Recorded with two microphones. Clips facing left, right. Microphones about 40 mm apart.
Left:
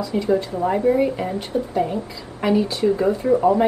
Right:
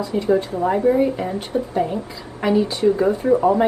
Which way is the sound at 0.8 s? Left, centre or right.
Centre.